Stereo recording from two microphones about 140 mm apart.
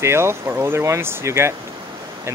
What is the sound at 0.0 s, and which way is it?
Speech, 20° right (ahead or behind).